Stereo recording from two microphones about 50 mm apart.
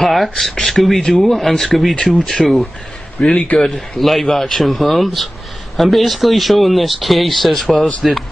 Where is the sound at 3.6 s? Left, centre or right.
Centre.